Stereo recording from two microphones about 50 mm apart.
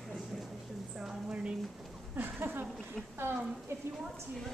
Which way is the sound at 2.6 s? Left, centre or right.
Centre.